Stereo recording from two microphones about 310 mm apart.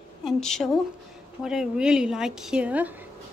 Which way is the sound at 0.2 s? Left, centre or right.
Centre.